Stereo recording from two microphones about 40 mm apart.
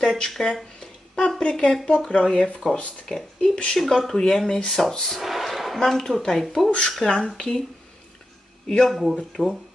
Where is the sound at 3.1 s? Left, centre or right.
Left.